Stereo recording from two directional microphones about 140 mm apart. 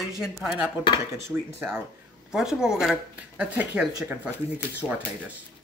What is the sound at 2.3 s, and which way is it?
Speech, 5° right (ahead or behind).